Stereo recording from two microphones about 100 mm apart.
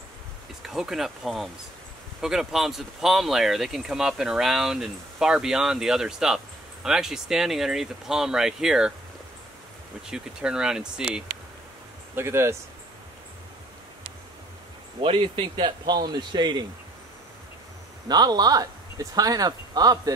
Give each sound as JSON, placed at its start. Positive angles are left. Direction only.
{"t": 0.6, "sound": "speech", "side_deg": -5}
{"t": 10.1, "sound": "speech", "side_deg": -5}
{"t": 12.2, "sound": "speech", "side_deg": -25}
{"t": 15.0, "sound": "a man's voice", "side_deg": -65}
{"t": 18.0, "sound": "speech", "side_deg": -45}